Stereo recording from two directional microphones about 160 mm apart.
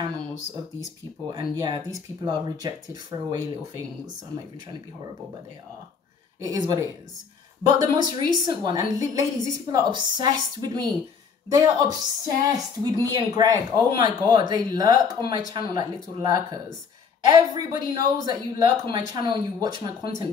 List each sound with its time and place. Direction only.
1.3 s a woman's voice: 25° right (ahead or behind)
6.4 s a woman's voice: 20° right (ahead or behind)